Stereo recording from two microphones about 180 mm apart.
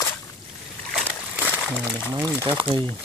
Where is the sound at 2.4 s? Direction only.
30° right (ahead or behind).